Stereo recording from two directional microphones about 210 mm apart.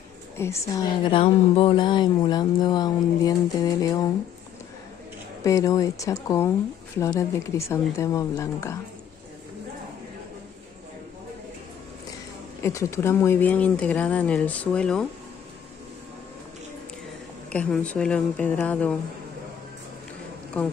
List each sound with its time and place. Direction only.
0.4 s a woman's voice: 15° left (ahead or behind)
5.4 s speech: 15° left (ahead or behind)
12.6 s speech: 10° left (ahead or behind)
17.5 s speech: 5° left (ahead or behind)
20.5 s speech: 5° left (ahead or behind)